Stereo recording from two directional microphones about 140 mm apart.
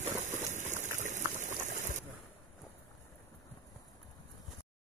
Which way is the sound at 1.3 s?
60° right (ahead or behind).